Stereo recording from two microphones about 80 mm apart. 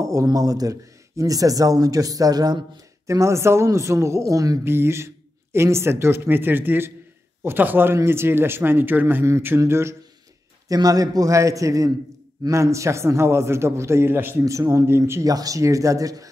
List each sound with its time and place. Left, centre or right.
0.0 s speech: right
3.1 s a man's voice: right
4.6 s a man's voice: right
10.7 s a man's voice: right
14.4 s a man's voice: right
15.2 s speech: right